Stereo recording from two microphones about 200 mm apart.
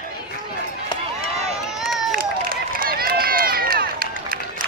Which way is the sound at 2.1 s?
45° right (ahead or behind).